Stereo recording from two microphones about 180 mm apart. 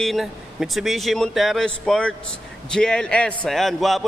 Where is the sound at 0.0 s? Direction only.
Centre (ahead or behind).